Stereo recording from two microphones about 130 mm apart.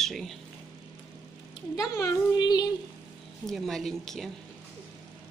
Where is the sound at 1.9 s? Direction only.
30° left (ahead or behind).